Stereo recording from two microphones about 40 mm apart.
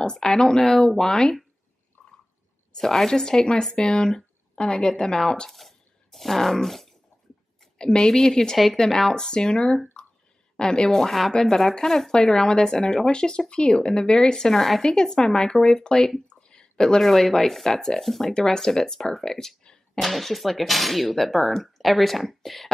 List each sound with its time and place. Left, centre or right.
0.1 s speech: centre
2.0 s a sound: left
2.7 s speech: centre
5.5 s a sound: centre
7.8 s speech: centre
11.0 s speech: centre
14.5 s speech: centre
14.8 s speech: centre
16.3 s a sound: left
17.0 s speech: centre
18.3 s speech: centre
20.0 s speech: centre